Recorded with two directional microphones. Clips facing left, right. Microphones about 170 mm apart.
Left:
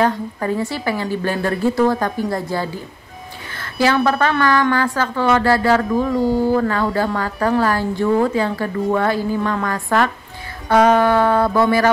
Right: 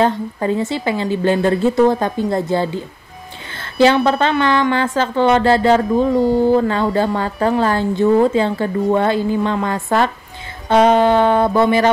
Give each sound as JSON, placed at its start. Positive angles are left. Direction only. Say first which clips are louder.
{"t": 0.0, "sound": "a woman's voice", "louder": "right 2 dB", "side_deg": -20}
{"t": 6.1, "sound": "speech", "louder": "right 2 dB", "side_deg": 0}
{"t": 6.4, "sound": "a woman's voice", "louder": "right 3 dB", "side_deg": -25}